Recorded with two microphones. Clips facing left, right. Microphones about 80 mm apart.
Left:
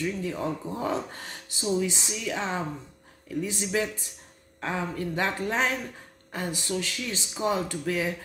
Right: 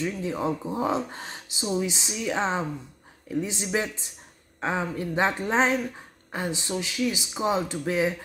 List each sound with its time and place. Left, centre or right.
0.0 s speech: right